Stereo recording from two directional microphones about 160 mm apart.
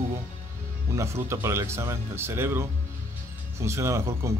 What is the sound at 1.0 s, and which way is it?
Speech, 15° right (ahead or behind).